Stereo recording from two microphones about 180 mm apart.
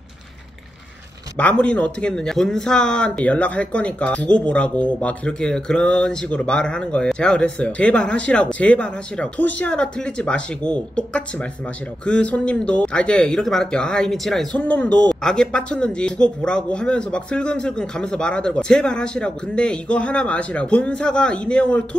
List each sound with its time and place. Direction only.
1.4 s speech: 5° left (ahead or behind)